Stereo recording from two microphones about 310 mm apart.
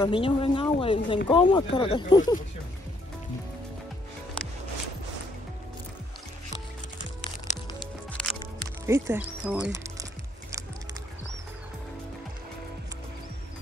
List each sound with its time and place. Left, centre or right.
0.0 s speech: centre
7.5 s music: left
8.1 s music: centre
8.8 s speech: centre